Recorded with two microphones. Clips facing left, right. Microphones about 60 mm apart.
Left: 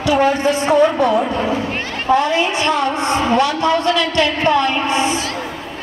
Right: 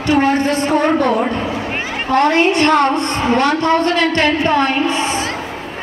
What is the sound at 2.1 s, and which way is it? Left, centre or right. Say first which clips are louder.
A woman's voice: right 2 dB; right.